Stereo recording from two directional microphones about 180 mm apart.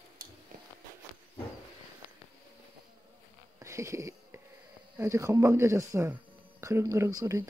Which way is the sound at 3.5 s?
15° right (ahead or behind).